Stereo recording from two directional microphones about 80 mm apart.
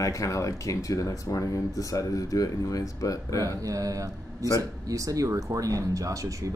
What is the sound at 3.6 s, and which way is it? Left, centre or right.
Speech, right.